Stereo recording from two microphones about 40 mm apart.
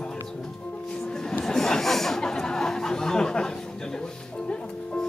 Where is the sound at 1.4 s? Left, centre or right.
Centre.